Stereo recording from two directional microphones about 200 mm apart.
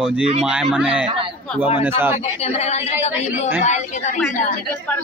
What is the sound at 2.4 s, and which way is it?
A woman's voice, 30° left (ahead or behind).